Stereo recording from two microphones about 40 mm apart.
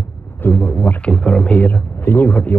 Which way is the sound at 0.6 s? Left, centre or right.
Left.